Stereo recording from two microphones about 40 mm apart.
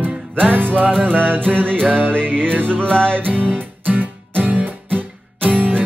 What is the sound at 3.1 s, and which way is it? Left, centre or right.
Music, right.